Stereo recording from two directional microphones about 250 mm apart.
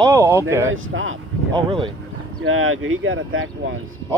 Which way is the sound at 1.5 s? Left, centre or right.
Right.